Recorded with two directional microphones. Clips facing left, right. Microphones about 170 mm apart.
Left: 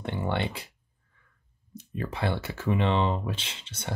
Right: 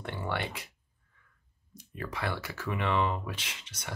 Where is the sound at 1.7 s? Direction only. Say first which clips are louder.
Left 5 dB; 25° left (ahead or behind).